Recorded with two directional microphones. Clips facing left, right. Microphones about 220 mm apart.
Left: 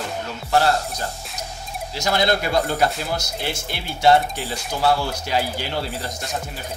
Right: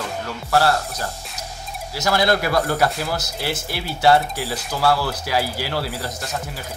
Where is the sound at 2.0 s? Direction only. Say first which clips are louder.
Right 2 dB; 20° left (ahead or behind).